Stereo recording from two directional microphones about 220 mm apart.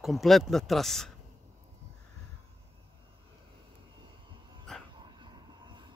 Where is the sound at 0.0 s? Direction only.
Centre (ahead or behind).